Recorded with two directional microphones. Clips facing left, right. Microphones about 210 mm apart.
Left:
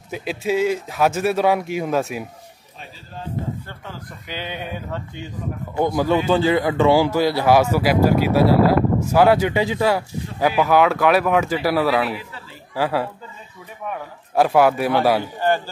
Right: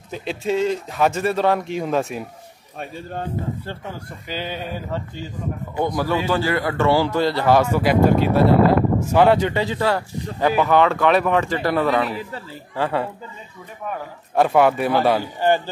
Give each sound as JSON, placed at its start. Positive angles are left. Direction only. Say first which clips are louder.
{"t": 0.1, "sound": "a man's voice", "louder": "left 1 dB", "side_deg": 5}
{"t": 2.8, "sound": "speech", "louder": "right 8 dB", "side_deg": -60}
{"t": 5.9, "sound": "a man's voice", "louder": "left 4 dB", "side_deg": 20}
{"t": 15.4, "sound": "a man's voice", "louder": "right 3 dB", "side_deg": -15}